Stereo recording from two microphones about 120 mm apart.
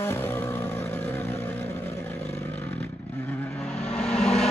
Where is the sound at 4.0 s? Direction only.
5° left (ahead or behind).